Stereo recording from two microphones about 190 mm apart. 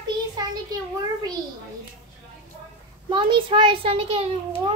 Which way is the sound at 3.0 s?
25° right (ahead or behind).